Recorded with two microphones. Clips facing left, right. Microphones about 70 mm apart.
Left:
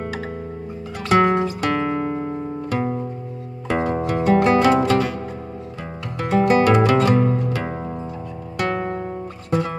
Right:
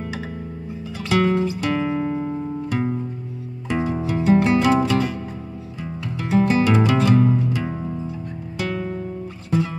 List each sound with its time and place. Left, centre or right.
1.0 s music: left
3.6 s music: left
6.2 s music: left
6.7 s music: left